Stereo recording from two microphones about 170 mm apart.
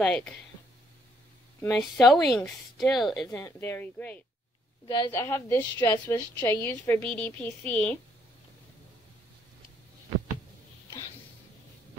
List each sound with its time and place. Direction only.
0.0 s a woman's voice: 5° left (ahead or behind)
1.7 s a woman's voice: centre (ahead or behind)
3.3 s a woman's voice: 15° left (ahead or behind)
4.8 s a woman's voice: 25° left (ahead or behind)
5.1 s a woman's voice: 15° left (ahead or behind)